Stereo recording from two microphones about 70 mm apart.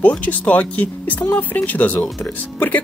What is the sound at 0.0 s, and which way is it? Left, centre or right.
Speech, left.